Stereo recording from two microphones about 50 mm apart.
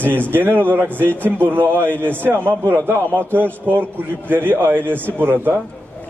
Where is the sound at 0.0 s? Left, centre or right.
Right.